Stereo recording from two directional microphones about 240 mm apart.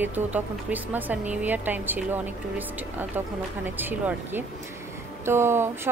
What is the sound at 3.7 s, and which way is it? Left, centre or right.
A woman's voice, centre.